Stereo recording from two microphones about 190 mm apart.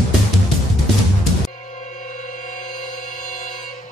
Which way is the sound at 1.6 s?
40° left (ahead or behind).